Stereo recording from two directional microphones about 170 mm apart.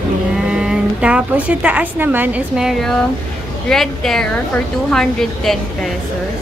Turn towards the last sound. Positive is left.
turn(degrees=0)  # may be behind; listen again after turning